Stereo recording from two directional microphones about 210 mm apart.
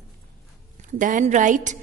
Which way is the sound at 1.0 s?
40° right (ahead or behind).